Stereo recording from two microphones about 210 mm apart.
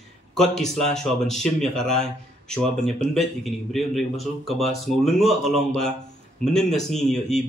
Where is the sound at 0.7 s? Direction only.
Centre (ahead or behind).